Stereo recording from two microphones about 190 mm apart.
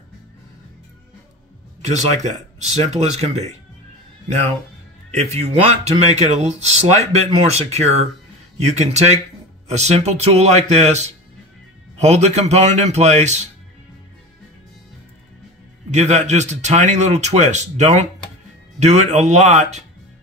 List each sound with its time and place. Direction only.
1.8 s speech: 35° right (ahead or behind)
5.2 s speech: 35° right (ahead or behind)
15.9 s speech: 40° right (ahead or behind)